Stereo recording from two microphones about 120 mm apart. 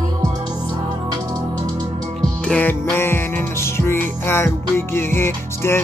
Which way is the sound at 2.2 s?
10° left (ahead or behind).